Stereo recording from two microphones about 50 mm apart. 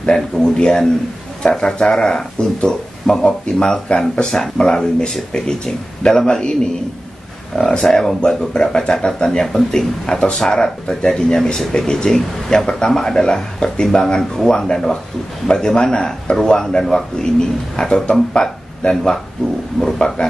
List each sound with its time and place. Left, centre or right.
0.0 s speech: centre